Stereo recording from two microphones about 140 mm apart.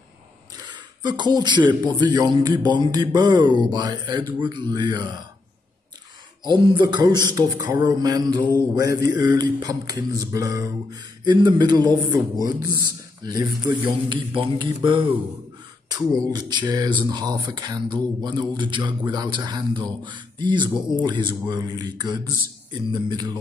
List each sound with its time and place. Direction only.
0.6 s speech: 30° right (ahead or behind)
6.4 s speech: 35° right (ahead or behind)